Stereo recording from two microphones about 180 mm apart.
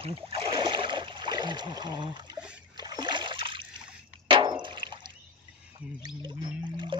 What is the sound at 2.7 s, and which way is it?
Splash, 25° right (ahead or behind).